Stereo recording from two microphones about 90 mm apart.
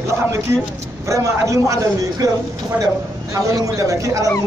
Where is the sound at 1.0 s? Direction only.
35° right (ahead or behind).